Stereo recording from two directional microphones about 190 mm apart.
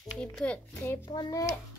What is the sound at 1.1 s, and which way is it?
Speech, 20° left (ahead or behind).